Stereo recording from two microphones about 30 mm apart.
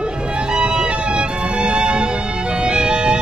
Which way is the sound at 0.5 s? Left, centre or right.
Right.